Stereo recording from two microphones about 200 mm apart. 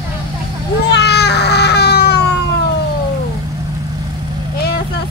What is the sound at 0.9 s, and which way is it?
Baby cry, 55° left (ahead or behind).